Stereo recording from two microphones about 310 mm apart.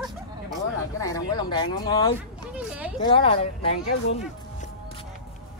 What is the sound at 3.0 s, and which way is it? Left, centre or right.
Speech, centre.